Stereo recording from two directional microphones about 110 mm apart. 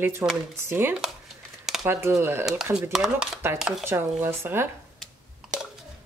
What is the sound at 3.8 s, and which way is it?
Speech, 20° right (ahead or behind).